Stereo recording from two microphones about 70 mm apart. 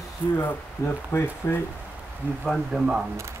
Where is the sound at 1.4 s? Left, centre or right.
Left.